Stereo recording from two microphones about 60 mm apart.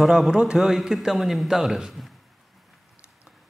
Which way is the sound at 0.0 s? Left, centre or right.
Centre.